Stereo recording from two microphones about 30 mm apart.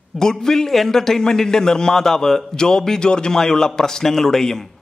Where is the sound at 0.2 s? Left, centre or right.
Centre.